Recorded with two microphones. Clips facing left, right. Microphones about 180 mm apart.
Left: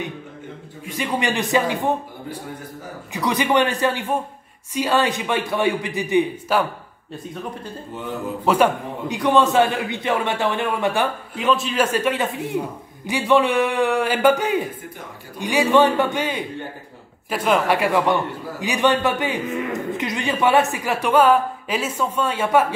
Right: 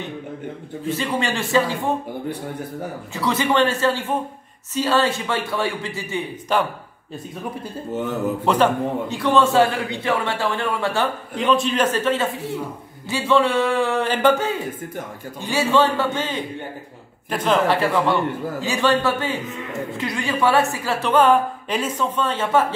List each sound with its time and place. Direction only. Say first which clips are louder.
0.8 s a woman's voice: even; 15° left (ahead or behind)
3.1 s a woman's voice: left 1 dB; 15° left (ahead or behind)
6.5 s a woman's voice: even; 5° left (ahead or behind)
8.5 s a man's voice: left 2 dB; 5° left (ahead or behind)
9.1 s a man's voice: left 1 dB; 15° left (ahead or behind)
11.4 s a woman's voice: right 1 dB; centre (ahead or behind)